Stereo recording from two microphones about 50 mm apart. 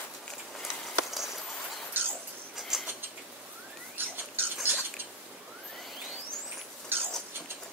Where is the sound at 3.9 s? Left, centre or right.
Right.